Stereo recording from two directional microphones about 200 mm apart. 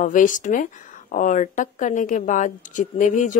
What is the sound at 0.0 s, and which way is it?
Speech, 40° left (ahead or behind).